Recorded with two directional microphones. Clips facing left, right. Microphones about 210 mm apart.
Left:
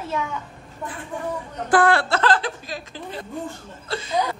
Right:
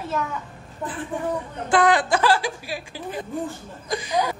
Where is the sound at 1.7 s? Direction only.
15° right (ahead or behind).